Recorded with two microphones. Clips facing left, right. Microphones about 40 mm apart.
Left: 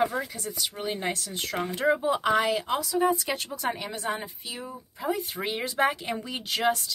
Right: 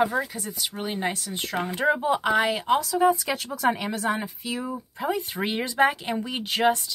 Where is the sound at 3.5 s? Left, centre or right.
Right.